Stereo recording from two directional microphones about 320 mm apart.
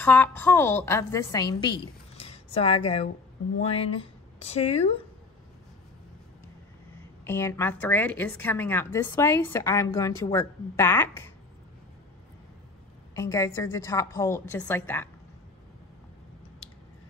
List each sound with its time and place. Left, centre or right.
0.0 s a woman's voice: centre
7.2 s a woman's voice: centre
13.1 s a woman's voice: centre